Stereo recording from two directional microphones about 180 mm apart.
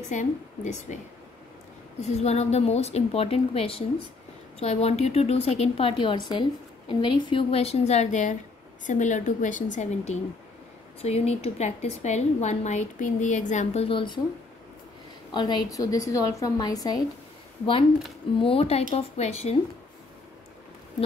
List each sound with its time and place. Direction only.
0.1 s a woman's voice: 45° left (ahead or behind)
2.0 s a woman's voice: 35° left (ahead or behind)
15.3 s a woman's voice: 20° left (ahead or behind)
18.4 s a woman's voice: 30° left (ahead or behind)